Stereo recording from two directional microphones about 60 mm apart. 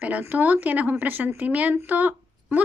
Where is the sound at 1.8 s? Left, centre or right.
Right.